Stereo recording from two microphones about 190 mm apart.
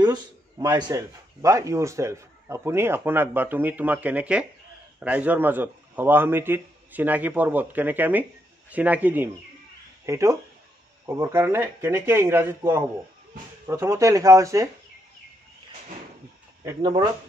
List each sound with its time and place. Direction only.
0.0 s a man's voice: 20° right (ahead or behind)
16.6 s speech: 25° right (ahead or behind)